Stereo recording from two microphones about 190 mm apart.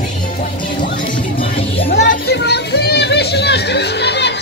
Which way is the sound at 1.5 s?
30° left (ahead or behind).